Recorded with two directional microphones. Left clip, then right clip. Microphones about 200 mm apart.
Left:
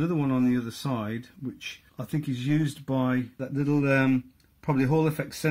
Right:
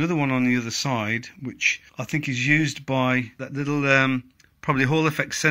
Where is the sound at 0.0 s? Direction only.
10° right (ahead or behind).